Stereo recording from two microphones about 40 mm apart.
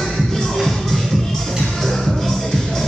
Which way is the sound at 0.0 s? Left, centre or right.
Centre.